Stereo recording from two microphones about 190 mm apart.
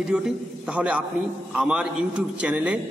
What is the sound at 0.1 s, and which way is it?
A man's voice, 5° right (ahead or behind).